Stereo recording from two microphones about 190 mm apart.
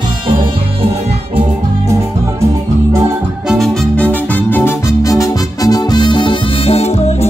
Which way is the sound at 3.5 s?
Centre (ahead or behind).